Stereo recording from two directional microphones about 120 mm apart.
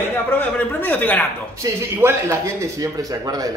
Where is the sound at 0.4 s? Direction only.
15° left (ahead or behind).